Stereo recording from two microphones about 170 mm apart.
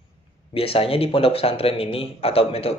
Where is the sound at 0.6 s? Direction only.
35° left (ahead or behind).